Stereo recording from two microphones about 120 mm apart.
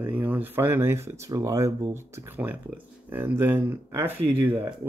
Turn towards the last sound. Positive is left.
turn(degrees=-20)  # may be behind; listen again after turning